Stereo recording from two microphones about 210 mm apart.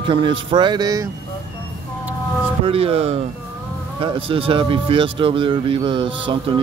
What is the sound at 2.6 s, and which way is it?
Speech, 25° right (ahead or behind).